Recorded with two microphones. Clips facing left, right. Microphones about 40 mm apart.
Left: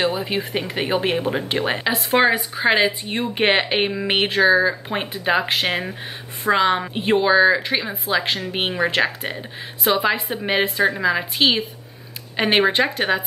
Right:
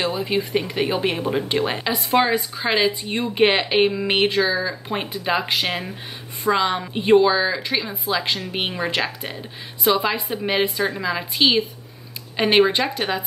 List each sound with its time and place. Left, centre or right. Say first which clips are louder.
0.0 s a woman's voice: left 1 dB; centre
1.6 s speech: left 1 dB; left
2.3 s a woman's voice: left 3 dB; left
4.5 s speech: left 7 dB; left
4.8 s a woman's voice: left 2 dB; centre